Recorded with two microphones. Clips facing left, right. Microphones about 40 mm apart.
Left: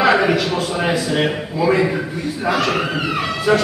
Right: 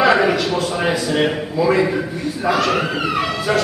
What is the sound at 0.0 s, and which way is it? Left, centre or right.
A man's voice, centre.